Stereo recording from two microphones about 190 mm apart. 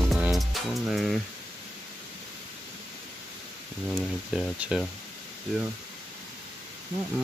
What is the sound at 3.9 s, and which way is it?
Speech, centre (ahead or behind).